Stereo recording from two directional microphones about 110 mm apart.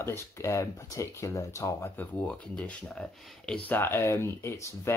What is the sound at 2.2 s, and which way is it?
Speech, 10° left (ahead or behind).